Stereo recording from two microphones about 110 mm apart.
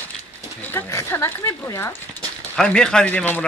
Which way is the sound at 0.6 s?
20° left (ahead or behind).